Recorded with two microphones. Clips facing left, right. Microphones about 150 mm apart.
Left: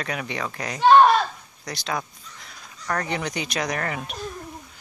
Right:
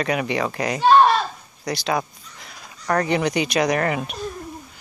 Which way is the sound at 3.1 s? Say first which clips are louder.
Right 7 dB; 75° right (ahead or behind).